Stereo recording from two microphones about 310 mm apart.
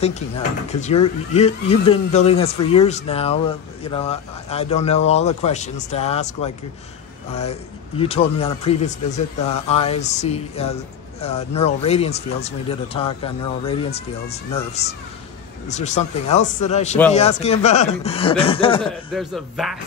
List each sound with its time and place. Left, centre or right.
0.0 s speech: left
8.0 s speech: centre
19.1 s a man's voice: centre